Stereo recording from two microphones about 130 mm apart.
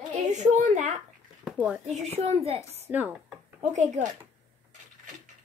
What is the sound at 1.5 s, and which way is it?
Speech, 10° right (ahead or behind).